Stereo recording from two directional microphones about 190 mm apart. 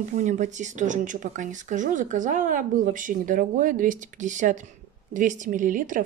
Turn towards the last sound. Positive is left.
turn(degrees=-45)  # may be behind; listen again after turning